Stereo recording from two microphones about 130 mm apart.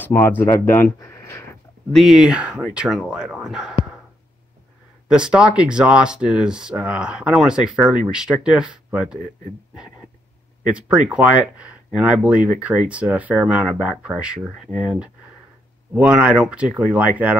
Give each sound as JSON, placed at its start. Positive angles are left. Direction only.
{"t": 0.0, "sound": "speech", "side_deg": 15}
{"t": 0.7, "sound": "a sound", "side_deg": 20}
{"t": 1.9, "sound": "speech", "side_deg": 0}
{"t": 5.0, "sound": "speech", "side_deg": -5}
{"t": 10.6, "sound": "speech", "side_deg": -10}